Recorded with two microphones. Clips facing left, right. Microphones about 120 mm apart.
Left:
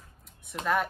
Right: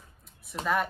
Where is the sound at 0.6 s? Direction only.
Centre (ahead or behind).